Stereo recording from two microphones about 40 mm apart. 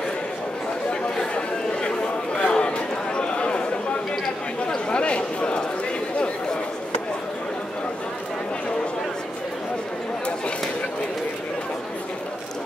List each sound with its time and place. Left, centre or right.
0.8 s chatter: left
4.6 s a sound: left
6.1 s chatter: left